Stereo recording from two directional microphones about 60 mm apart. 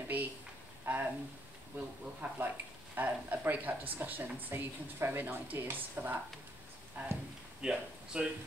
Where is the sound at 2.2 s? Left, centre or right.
Right.